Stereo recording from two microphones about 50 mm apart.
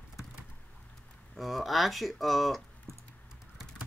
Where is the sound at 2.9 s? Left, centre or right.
Right.